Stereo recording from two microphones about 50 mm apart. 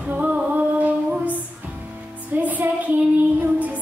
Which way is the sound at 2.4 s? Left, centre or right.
Right.